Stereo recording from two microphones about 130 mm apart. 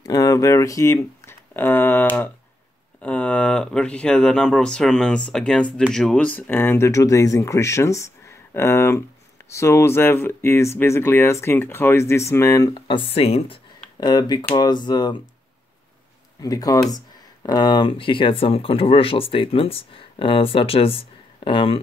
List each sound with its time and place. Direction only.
0.0 s speech: 25° left (ahead or behind); by 13.6 s 50° left (ahead or behind)
13.9 s speech: 30° left (ahead or behind)
16.3 s speech: 25° left (ahead or behind); by 21.8 s 45° left (ahead or behind)